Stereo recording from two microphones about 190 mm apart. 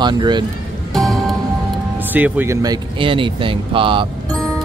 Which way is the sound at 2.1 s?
10° right (ahead or behind).